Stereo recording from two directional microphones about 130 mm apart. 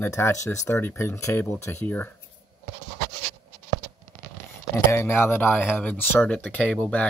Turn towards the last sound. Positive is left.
turn(degrees=10)  # may be behind; listen again after turning